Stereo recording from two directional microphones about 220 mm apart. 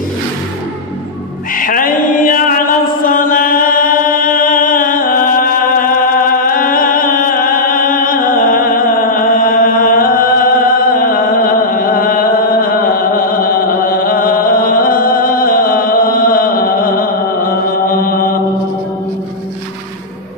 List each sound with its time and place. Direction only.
1.5 s mantra: 40° left (ahead or behind)
11.7 s chant: 40° left (ahead or behind)